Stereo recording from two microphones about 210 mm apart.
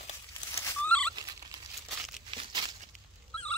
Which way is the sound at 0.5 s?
10° left (ahead or behind).